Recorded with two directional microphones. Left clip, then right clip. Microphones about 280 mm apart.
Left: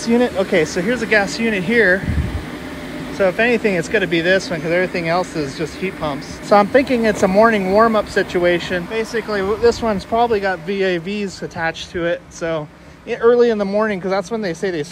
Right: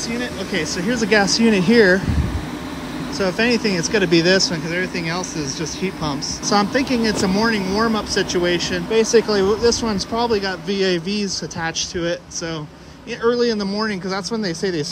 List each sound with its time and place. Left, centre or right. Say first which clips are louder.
0.0 s a man's voice: left 9 dB; centre
3.2 s a man's voice: left 4 dB; centre
8.9 s speech: right 9 dB; right
9.4 s a man's voice: left 1 dB; centre